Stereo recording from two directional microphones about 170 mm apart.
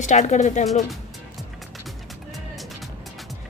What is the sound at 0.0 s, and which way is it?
Speech, 45° left (ahead or behind).